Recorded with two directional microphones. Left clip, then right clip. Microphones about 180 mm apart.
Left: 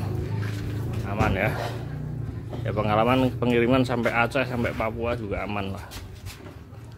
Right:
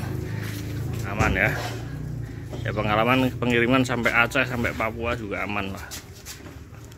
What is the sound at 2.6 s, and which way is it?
Speech, 5° left (ahead or behind).